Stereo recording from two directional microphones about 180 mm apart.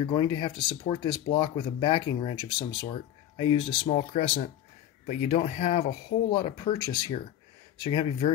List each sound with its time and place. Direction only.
0.0 s speech: 25° left (ahead or behind)
3.9 s speech: 45° left (ahead or behind)
5.9 s speech: 30° left (ahead or behind)